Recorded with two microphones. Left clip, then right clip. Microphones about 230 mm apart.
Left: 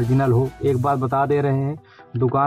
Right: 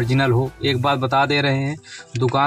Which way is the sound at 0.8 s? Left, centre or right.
Right.